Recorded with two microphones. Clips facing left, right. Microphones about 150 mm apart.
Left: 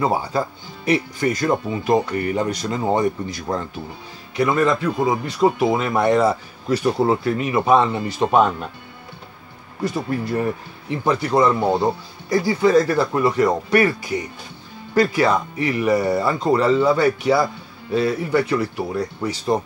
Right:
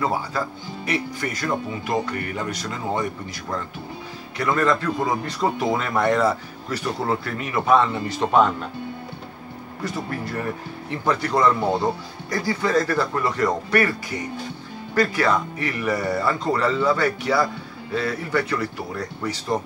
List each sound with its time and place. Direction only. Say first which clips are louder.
0.0 s speech: left 4 dB; 20° left (ahead or behind)
10.2 s speech: left 5 dB; 20° left (ahead or behind)
15.0 s speech: left 3 dB; 15° left (ahead or behind)